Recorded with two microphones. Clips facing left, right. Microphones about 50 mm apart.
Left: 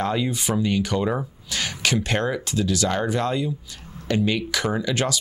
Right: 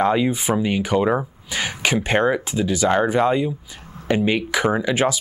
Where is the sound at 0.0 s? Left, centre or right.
Right.